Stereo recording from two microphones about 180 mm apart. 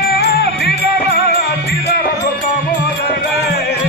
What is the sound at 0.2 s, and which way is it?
Music, 65° left (ahead or behind).